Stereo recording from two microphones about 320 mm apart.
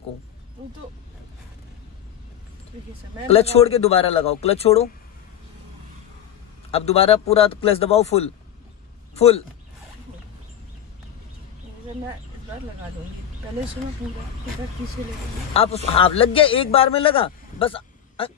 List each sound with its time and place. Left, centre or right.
3.3 s a man's voice: centre
6.7 s a man's voice: centre
15.5 s a man's voice: centre